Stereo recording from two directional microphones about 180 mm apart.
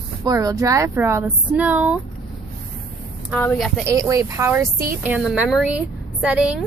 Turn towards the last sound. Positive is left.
turn(degrees=-5)  # may be behind; listen again after turning